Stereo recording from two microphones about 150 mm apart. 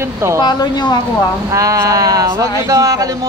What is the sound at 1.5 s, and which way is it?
Speech, 20° right (ahead or behind).